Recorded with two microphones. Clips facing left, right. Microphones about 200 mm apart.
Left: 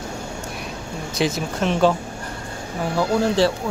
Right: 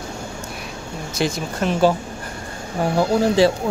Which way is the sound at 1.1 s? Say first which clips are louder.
Left 1 dB; centre (ahead or behind).